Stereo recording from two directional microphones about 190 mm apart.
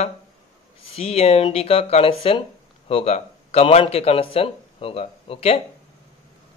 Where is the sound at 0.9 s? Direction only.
35° left (ahead or behind).